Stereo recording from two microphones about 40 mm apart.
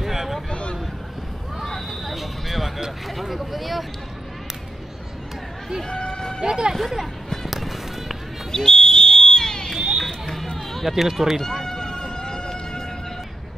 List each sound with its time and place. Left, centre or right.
0.0 s a sound: centre
0.5 s vehicle: left
1.6 s a sound: centre
3.2 s vehicle: centre
5.9 s run: centre
6.4 s speech: centre
6.7 s speech: centre
7.4 s music: centre
8.5 s fire alarm: centre
9.8 s run: centre
10.2 s run: centre
10.7 s speech: centre
11.4 s a sound: centre